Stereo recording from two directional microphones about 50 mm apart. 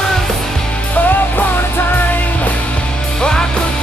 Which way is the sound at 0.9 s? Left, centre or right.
Left.